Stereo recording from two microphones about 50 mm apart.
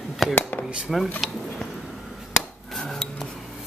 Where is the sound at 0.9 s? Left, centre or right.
Centre.